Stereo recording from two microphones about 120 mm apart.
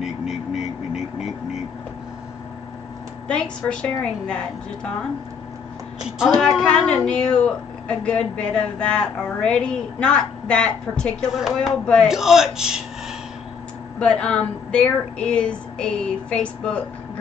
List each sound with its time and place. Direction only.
0.0 s vehicle: 5° right (ahead or behind)
3.3 s a woman's voice: 10° left (ahead or behind)
5.9 s a woman's voice: 5° right (ahead or behind)
6.4 s a woman's voice: 5° left (ahead or behind)
11.8 s a woman's voice: 10° left (ahead or behind)
12.1 s speech: 5° right (ahead or behind)
13.9 s a woman's voice: 10° left (ahead or behind)